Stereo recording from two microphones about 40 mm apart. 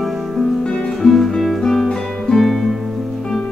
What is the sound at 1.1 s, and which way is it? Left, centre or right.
Music, centre.